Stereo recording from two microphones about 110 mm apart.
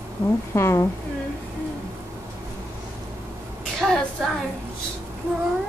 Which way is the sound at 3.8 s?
5° left (ahead or behind).